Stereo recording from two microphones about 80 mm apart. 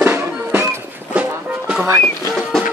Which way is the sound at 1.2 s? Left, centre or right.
Centre.